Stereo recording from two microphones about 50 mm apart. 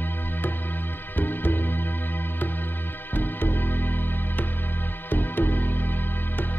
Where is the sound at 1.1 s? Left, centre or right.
Left.